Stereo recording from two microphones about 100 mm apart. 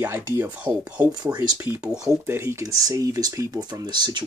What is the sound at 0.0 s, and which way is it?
Speech, 20° right (ahead or behind).